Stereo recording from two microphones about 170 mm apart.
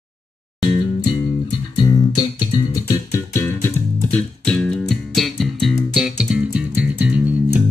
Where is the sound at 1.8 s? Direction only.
25° left (ahead or behind).